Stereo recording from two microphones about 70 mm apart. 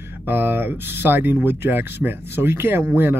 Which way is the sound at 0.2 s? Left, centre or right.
Right.